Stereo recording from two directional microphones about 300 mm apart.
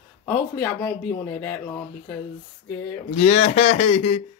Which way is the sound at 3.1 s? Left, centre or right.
Left.